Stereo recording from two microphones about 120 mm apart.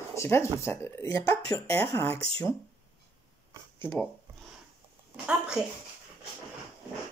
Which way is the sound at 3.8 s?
15° left (ahead or behind).